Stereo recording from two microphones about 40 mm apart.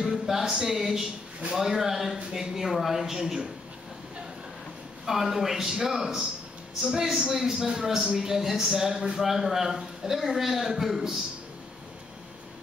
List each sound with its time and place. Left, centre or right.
0.0 s a man's voice: centre
5.0 s a man's voice: centre